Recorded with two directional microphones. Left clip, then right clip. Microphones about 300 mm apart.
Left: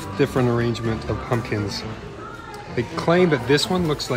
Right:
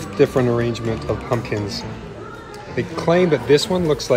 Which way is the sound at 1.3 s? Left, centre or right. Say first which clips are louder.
Left 1 dB; left.